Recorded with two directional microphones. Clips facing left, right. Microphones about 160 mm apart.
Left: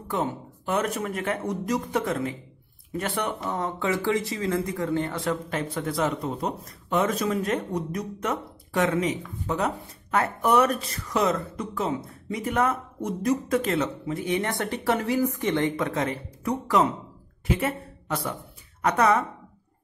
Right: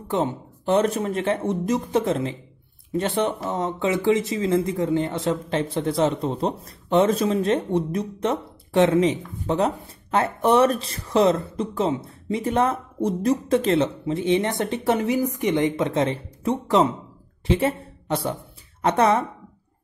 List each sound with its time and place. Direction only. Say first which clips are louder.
0.1 s a woman's voice: right 4 dB; 25° right (ahead or behind)